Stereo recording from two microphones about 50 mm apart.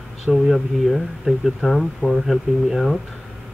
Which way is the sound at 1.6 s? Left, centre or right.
Centre.